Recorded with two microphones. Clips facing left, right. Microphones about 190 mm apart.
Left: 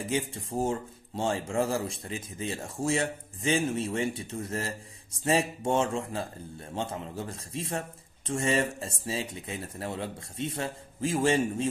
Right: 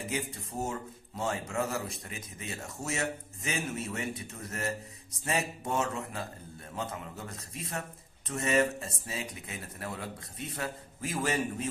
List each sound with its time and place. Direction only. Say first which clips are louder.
0.1 s a man's voice: left 8 dB; 30° left (ahead or behind)